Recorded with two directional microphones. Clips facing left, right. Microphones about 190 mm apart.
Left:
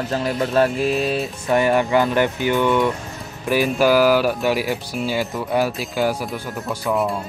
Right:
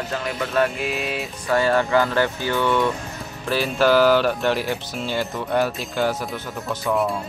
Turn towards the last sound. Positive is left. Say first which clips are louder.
# left 1 dB
turn(degrees=5)  # may be behind; listen again after turning